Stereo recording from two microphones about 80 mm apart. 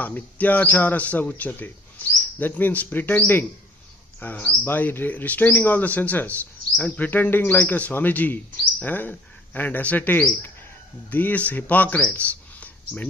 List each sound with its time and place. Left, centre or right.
0.0 s speech: left